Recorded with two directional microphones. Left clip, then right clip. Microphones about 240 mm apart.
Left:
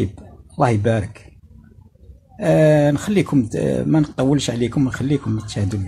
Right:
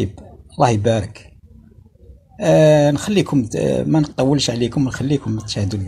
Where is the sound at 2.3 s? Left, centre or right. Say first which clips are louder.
Right 3 dB; centre.